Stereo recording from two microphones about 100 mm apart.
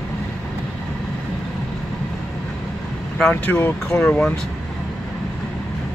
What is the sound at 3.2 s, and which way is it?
Speech, 10° left (ahead or behind).